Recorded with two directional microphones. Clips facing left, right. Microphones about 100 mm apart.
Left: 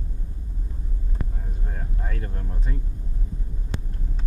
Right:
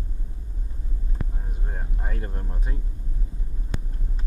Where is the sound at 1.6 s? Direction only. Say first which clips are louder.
Even; 25° right (ahead or behind).